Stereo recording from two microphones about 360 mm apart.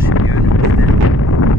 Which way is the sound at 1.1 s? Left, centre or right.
Left.